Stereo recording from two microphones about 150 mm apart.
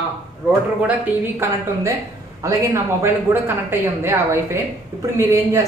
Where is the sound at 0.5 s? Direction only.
10° right (ahead or behind).